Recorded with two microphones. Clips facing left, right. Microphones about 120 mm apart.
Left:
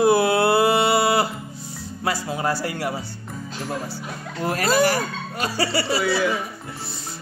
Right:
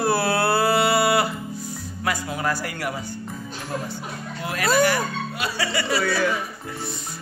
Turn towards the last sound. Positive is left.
turn(degrees=5)  # may be behind; listen again after turning